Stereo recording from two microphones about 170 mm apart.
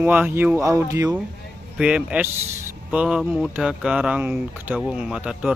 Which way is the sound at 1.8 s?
5° right (ahead or behind).